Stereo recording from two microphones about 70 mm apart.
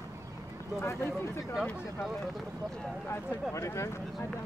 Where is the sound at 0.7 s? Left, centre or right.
Left.